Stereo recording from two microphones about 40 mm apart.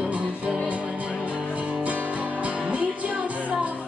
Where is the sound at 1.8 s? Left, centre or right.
Right.